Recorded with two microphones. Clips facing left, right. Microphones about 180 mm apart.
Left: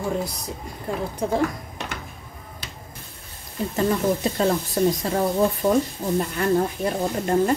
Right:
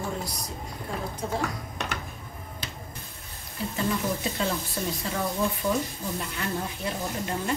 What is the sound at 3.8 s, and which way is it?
Speech, 40° left (ahead or behind).